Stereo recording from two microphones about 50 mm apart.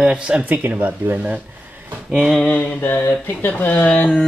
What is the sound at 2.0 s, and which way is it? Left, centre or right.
Mantra, centre.